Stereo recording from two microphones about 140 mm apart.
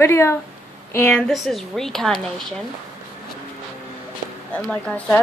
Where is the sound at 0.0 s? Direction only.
20° left (ahead or behind); by 2.1 s 5° left (ahead or behind).